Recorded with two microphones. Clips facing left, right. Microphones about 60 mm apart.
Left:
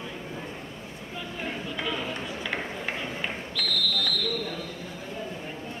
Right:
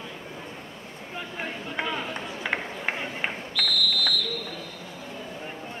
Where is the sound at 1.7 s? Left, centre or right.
Right.